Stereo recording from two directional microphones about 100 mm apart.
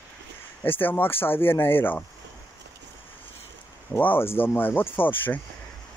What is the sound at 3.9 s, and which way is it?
Speech, 20° left (ahead or behind).